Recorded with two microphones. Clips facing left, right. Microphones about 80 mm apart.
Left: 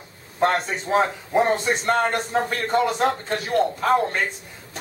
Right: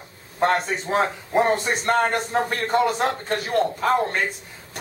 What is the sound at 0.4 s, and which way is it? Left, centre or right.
Speech, centre.